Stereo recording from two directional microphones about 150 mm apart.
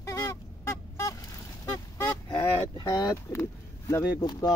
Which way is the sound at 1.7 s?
20° left (ahead or behind).